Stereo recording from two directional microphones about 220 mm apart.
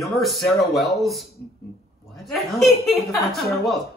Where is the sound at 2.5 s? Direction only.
Centre (ahead or behind).